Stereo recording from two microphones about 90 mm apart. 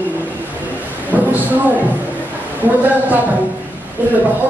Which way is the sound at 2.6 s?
20° right (ahead or behind).